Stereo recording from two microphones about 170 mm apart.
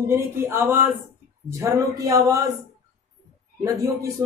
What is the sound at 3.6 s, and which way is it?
Speech, 20° right (ahead or behind).